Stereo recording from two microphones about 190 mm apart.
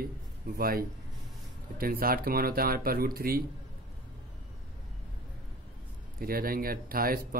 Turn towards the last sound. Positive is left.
turn(degrees=-50)  # may be behind; listen again after turning